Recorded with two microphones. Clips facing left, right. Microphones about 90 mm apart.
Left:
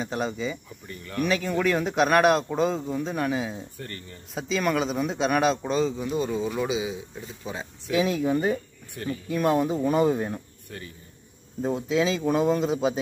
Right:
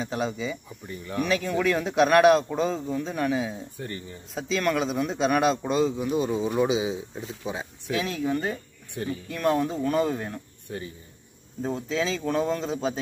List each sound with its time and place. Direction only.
0.0 s a man's voice: centre (ahead or behind)
0.7 s speech: 15° right (ahead or behind)
1.2 s a man's voice: centre (ahead or behind)
3.7 s speech: 15° right (ahead or behind)
4.3 s a man's voice: 5° left (ahead or behind); by 7.9 s 20° right (ahead or behind)
7.9 s speech: 10° left (ahead or behind)
8.9 s speech: 20° right (ahead or behind)
9.3 s speech: 10° left (ahead or behind)
10.7 s speech: 20° right (ahead or behind)
11.6 s speech: 5° left (ahead or behind)